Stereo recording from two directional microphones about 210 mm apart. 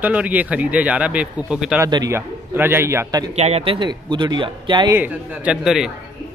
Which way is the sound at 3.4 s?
30° right (ahead or behind).